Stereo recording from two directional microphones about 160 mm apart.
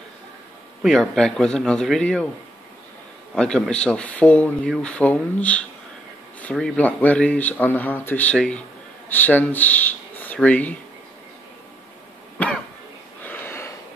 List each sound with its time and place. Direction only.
0.8 s speech: 5° left (ahead or behind)
3.3 s speech: 5° left (ahead or behind)
13.2 s a sound: 10° left (ahead or behind)